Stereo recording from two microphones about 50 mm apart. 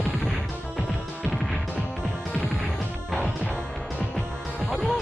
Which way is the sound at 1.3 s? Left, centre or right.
Centre.